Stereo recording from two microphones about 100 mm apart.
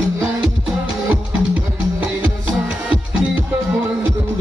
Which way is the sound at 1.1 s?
15° right (ahead or behind).